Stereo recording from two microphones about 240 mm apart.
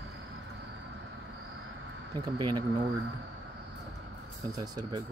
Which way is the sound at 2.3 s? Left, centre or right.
Centre.